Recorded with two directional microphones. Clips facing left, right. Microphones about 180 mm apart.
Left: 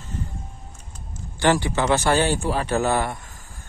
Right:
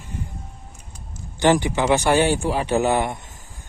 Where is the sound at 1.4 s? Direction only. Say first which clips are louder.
Right 2 dB; 15° right (ahead or behind).